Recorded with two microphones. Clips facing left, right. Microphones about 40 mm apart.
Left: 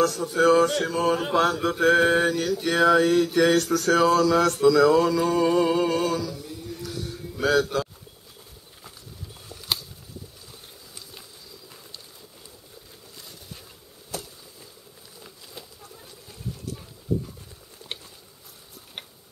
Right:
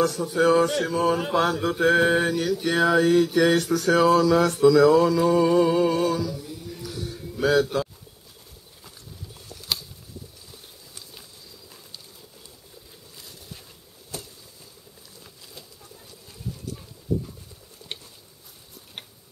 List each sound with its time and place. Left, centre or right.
0.0 s speech: centre
0.4 s mantra: centre
3.5 s speech: centre
4.0 s mantra: centre
5.9 s music: centre
9.7 s a sound: centre
15.6 s a sound: left